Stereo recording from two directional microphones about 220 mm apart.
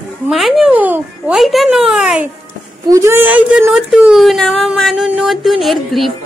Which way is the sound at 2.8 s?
15° right (ahead or behind).